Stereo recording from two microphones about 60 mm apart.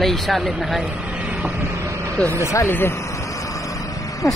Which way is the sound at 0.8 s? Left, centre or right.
Right.